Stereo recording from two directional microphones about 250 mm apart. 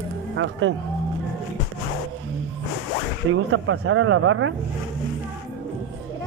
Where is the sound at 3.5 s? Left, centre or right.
Right.